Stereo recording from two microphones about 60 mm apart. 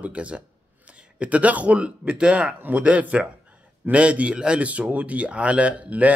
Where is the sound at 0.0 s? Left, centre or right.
Right.